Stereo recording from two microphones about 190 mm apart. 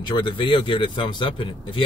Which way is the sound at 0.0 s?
25° left (ahead or behind).